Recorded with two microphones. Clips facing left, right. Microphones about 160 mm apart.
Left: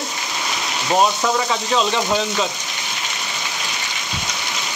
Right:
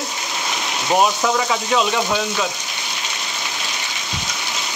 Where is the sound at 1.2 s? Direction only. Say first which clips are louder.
Right 1 dB; 5° right (ahead or behind).